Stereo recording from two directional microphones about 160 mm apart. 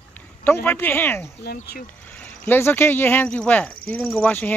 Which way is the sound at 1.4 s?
75° left (ahead or behind).